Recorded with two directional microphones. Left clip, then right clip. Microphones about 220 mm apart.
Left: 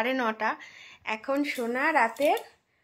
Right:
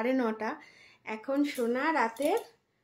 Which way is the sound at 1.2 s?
15° left (ahead or behind).